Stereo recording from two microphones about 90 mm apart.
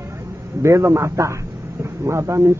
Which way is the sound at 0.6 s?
35° right (ahead or behind).